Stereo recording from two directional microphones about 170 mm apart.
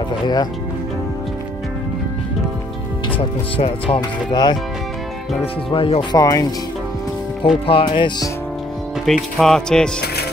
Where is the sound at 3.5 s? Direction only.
35° left (ahead or behind).